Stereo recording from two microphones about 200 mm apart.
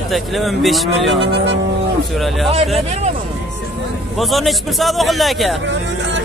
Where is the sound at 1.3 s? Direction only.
60° right (ahead or behind).